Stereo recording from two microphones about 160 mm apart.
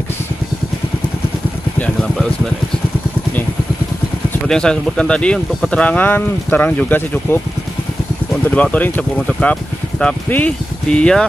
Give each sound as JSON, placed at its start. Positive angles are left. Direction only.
{"t": 1.8, "sound": "speech", "side_deg": 5}
{"t": 4.5, "sound": "speech", "side_deg": 5}
{"t": 8.5, "sound": "speech", "side_deg": 10}